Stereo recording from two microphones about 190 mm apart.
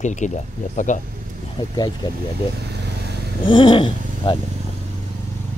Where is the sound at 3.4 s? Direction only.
25° left (ahead or behind).